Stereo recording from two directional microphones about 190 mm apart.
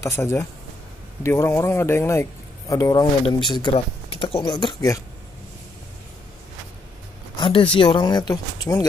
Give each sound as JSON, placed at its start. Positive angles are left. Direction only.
{"t": 0.0, "sound": "speech", "side_deg": 15}
{"t": 7.3, "sound": "a sound", "side_deg": 25}
{"t": 7.7, "sound": "speech", "side_deg": 25}